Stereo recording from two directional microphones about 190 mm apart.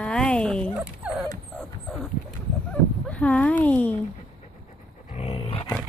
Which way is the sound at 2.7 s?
5° left (ahead or behind).